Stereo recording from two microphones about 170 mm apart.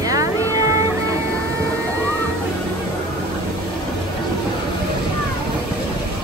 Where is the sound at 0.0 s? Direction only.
20° right (ahead or behind).